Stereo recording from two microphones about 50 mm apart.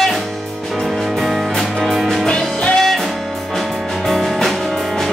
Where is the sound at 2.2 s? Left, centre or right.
Centre.